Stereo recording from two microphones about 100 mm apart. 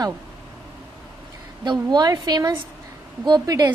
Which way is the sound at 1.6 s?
45° right (ahead or behind).